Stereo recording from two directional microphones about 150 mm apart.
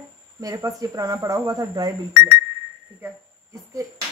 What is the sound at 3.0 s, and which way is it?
Cricket, 20° right (ahead or behind).